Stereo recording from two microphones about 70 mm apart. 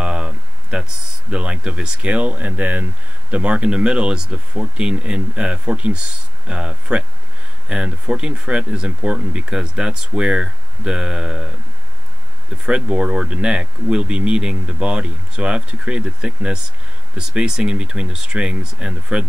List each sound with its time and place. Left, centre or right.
0.0 s speech: centre
12.6 s speech: centre